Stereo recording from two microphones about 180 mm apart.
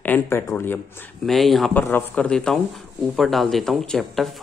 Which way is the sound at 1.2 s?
Centre (ahead or behind).